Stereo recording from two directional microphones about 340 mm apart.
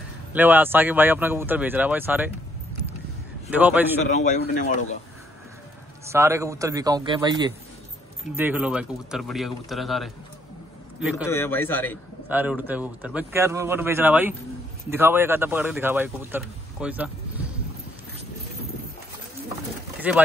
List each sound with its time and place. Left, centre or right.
0.3 s speech: centre
3.4 s speech: centre
4.2 s speech: left
6.0 s a man's voice: centre
20.1 s speech: centre